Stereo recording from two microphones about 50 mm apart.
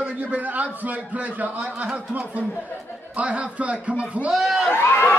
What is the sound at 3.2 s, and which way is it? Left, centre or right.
A man's voice, right.